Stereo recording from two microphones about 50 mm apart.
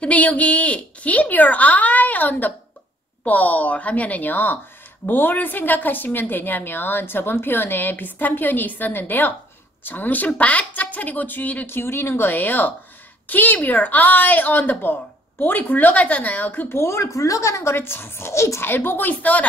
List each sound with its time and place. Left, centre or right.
0.0 s a woman's voice: left
11.6 s a woman's voice: left
16.6 s speech: left
18.6 s a woman's voice: left